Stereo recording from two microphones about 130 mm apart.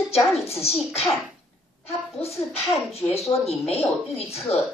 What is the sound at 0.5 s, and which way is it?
Speech, 50° left (ahead or behind).